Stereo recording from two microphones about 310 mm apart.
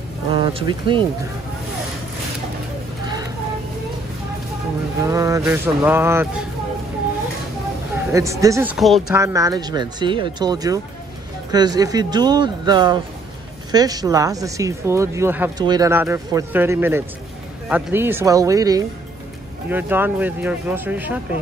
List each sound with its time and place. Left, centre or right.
0.3 s speech: centre
5.0 s speech: centre
8.1 s speech: centre